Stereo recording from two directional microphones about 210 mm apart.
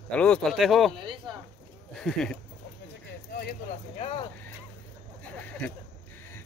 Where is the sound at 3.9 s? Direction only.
30° left (ahead or behind).